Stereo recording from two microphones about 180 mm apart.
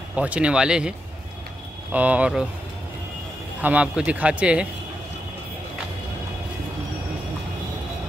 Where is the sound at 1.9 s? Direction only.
10° right (ahead or behind).